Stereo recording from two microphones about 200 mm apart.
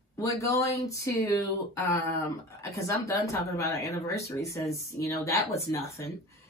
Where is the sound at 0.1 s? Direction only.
15° left (ahead or behind).